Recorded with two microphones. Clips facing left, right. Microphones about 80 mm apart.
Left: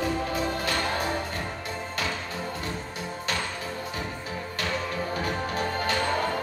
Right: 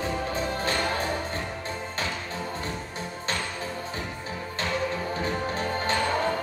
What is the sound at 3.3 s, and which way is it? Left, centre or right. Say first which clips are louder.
Music: even; right.